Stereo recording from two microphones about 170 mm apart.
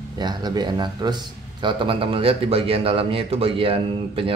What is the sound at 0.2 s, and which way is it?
A man's voice, 25° right (ahead or behind).